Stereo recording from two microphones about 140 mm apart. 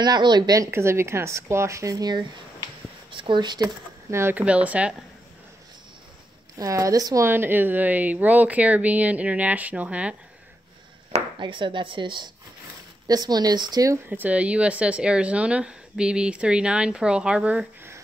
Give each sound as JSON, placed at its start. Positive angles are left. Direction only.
{"t": 0.0, "sound": "speech", "side_deg": -30}
{"t": 4.1, "sound": "speech", "side_deg": -15}
{"t": 6.6, "sound": "speech", "side_deg": -25}
{"t": 11.1, "sound": "speech", "side_deg": -40}
{"t": 14.0, "sound": "speech", "side_deg": -10}